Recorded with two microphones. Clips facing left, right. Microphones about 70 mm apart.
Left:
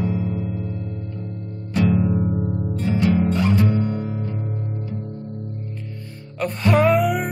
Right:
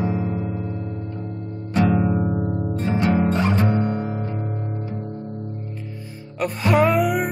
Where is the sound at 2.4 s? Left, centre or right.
Right.